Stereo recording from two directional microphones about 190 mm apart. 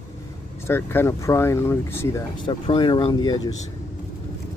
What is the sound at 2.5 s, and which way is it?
Speech, 25° left (ahead or behind).